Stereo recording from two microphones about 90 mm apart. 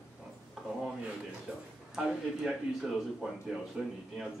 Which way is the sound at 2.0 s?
5° right (ahead or behind).